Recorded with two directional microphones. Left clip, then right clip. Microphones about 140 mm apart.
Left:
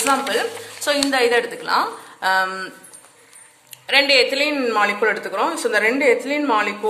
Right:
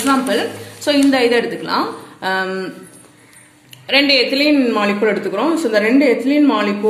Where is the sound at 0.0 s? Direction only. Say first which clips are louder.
Right 3 dB; 35° left (ahead or behind).